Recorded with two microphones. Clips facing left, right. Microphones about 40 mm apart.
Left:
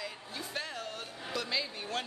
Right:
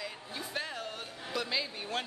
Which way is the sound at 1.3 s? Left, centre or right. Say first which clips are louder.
Right 1 dB; centre.